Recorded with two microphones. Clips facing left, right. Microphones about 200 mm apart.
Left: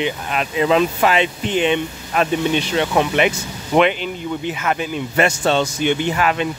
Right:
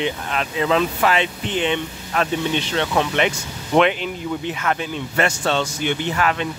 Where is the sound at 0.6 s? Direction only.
15° left (ahead or behind).